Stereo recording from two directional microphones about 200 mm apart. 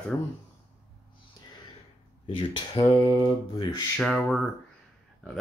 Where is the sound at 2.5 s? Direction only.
25° left (ahead or behind).